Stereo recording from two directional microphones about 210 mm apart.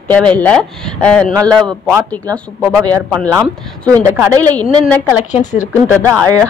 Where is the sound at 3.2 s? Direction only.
15° right (ahead or behind).